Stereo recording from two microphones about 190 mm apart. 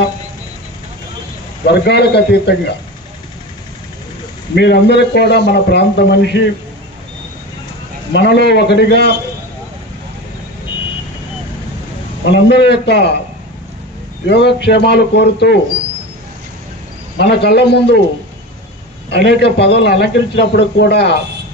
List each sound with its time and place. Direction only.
1.7 s a man's voice: 60° left (ahead or behind)
4.6 s a man's voice: 65° left (ahead or behind)
8.1 s a man's voice: 65° left (ahead or behind)
12.3 s a man's voice: 65° left (ahead or behind)
14.2 s a man's voice: 65° left (ahead or behind)
17.2 s a man's voice: 60° left (ahead or behind)
19.0 s a man's voice: 65° left (ahead or behind)